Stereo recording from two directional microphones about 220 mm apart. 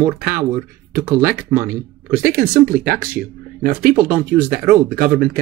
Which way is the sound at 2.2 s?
40° right (ahead or behind).